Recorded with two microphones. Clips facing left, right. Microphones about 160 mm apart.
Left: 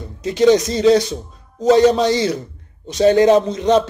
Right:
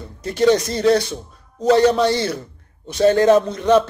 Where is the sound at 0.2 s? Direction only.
15° left (ahead or behind).